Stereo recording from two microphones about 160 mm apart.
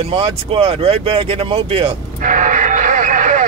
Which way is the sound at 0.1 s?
35° right (ahead or behind).